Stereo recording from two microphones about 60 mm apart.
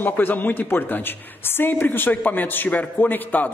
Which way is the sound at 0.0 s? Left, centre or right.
Left.